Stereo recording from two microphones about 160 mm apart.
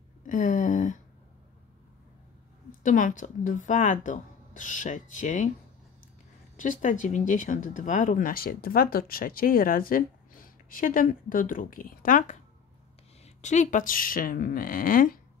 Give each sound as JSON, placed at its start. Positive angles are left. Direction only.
{"t": 0.3, "sound": "speech", "side_deg": 55}
{"t": 2.8, "sound": "speech", "side_deg": 50}
{"t": 6.5, "sound": "speech", "side_deg": 55}